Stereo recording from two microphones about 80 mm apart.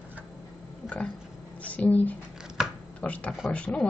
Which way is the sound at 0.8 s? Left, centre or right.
Centre.